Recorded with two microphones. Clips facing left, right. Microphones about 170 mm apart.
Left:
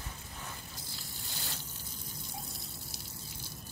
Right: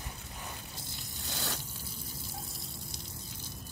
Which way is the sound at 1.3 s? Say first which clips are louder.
Right 8 dB; 80° right.